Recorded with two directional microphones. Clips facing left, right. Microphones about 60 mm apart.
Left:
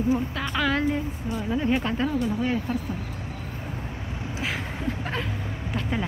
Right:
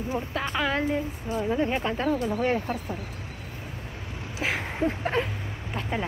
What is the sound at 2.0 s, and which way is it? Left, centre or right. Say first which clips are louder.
Speech: right 1 dB; right.